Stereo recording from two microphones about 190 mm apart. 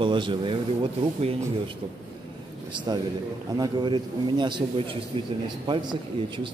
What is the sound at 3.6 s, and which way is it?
Speech, 25° right (ahead or behind).